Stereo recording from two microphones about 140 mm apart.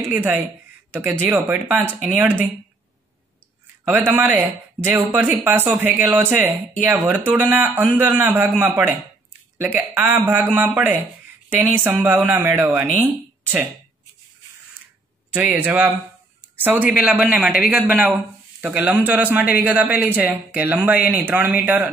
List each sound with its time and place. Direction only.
0.1 s a man's voice: 15° right (ahead or behind)
3.9 s a man's voice: 10° right (ahead or behind)
15.3 s a man's voice: 10° right (ahead or behind)